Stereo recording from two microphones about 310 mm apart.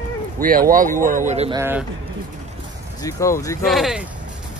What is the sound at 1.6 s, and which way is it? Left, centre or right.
Speech, centre.